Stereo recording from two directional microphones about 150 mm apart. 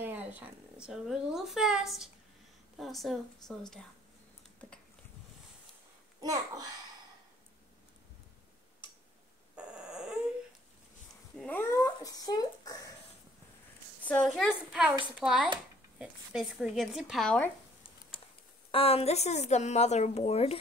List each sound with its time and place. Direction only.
0.0 s a sound: 10° right (ahead or behind)
0.8 s speech: 5° right (ahead or behind)
6.2 s a child's voice: 25° right (ahead or behind)
11.3 s cat: 10° left (ahead or behind)
11.7 s a sound: 25° left (ahead or behind)
14.0 s speech: 5° left (ahead or behind)
18.7 s a woman's voice: 40° left (ahead or behind)